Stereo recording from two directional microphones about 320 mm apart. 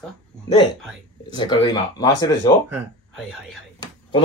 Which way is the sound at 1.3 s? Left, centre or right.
Centre.